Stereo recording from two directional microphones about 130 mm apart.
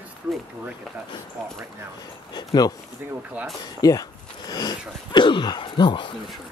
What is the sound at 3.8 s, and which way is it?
Speech, 30° left (ahead or behind).